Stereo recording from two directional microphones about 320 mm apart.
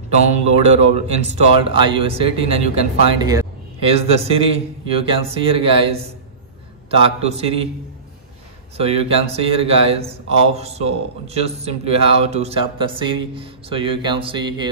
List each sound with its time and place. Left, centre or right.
0.1 s a sound: centre
1.2 s speech: centre
8.7 s speech: centre